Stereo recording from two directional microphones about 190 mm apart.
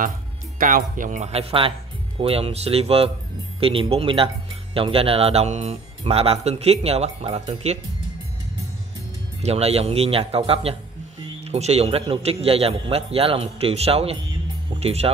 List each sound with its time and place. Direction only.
0.6 s speech: 45° right (ahead or behind)
9.4 s speech: 35° right (ahead or behind)